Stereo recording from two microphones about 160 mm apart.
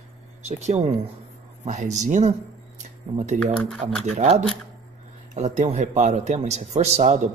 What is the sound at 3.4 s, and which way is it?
Speech, centre (ahead or behind).